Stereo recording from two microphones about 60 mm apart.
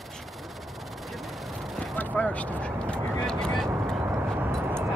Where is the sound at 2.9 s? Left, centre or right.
Centre.